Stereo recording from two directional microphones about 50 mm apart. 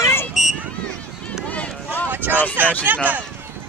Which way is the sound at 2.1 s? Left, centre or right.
Right.